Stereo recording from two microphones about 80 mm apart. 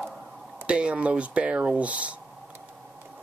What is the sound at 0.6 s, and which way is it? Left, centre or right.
Speech, centre.